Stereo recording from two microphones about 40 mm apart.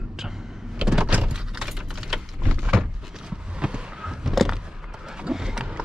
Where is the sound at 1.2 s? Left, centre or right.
Centre.